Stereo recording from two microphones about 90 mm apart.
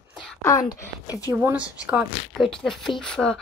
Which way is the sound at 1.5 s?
15° right (ahead or behind).